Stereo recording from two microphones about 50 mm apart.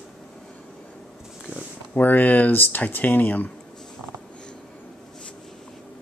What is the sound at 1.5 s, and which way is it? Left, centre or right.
Speech, left.